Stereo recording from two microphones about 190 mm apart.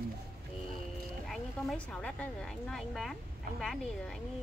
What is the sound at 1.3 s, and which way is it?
A woman's voice, 5° left (ahead or behind).